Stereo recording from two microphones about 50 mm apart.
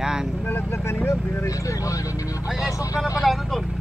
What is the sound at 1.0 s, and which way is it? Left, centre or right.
Speech, left.